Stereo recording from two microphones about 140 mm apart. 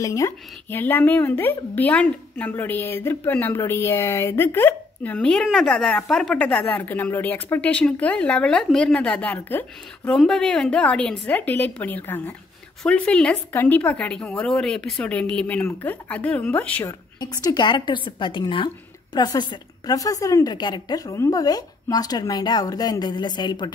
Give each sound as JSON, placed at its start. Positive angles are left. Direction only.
{"t": 0.0, "sound": "speech", "side_deg": 25}
{"t": 17.2, "sound": "a woman's voice", "side_deg": 25}